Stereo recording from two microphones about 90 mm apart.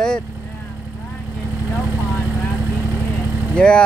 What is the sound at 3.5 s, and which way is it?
Speech, 10° left (ahead or behind).